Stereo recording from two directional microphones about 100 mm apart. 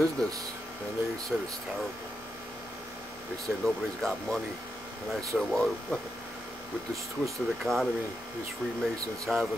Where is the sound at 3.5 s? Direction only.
15° right (ahead or behind).